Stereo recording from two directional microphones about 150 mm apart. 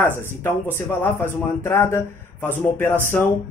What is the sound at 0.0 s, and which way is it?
Speech, 15° left (ahead or behind).